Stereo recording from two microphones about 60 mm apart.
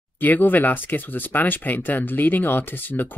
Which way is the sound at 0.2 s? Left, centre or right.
Left.